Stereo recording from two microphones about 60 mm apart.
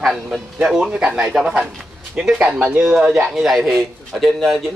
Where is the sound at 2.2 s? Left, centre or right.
Centre.